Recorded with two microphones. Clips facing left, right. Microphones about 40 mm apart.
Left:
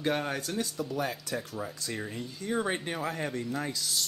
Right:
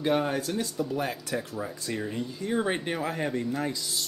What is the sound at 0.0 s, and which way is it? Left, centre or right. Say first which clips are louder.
Speech: right 4 dB; centre.